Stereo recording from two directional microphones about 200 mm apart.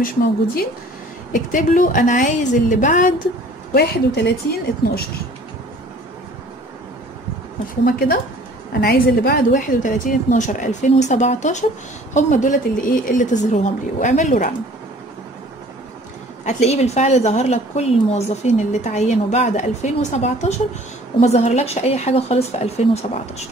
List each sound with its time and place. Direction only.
1.3 s a woman's voice: 40° left (ahead or behind)
3.7 s a woman's voice: 50° left (ahead or behind)
7.8 s a woman's voice: 45° left (ahead or behind)
16.4 s a woman's voice: 35° left (ahead or behind)